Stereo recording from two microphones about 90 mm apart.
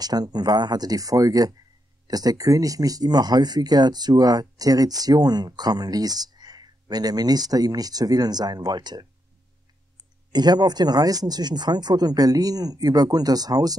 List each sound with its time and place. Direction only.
0.0 s speech: 45° right (ahead or behind)
10.3 s speech: 50° right (ahead or behind)